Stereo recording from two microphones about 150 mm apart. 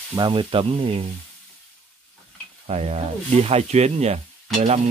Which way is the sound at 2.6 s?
45° right (ahead or behind).